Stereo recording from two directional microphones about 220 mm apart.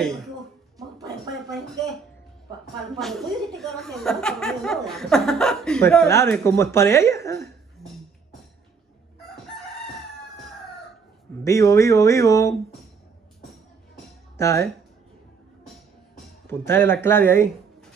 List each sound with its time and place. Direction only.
0.7 s a sound: 15° right (ahead or behind)
2.9 s a woman's voice: centre (ahead or behind)
7.8 s music: centre (ahead or behind)
11.4 s speech: 15° left (ahead or behind)
14.3 s speech: 15° left (ahead or behind)
16.4 s speech: 10° left (ahead or behind)